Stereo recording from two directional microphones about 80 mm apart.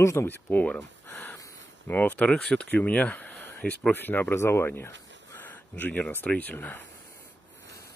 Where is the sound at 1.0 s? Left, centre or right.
Left.